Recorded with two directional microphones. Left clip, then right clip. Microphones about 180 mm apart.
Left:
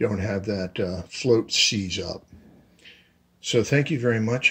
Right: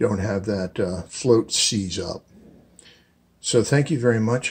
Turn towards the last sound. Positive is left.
turn(degrees=10)  # may be behind; listen again after turning